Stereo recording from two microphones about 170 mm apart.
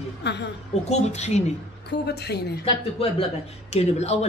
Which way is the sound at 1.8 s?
75° left (ahead or behind).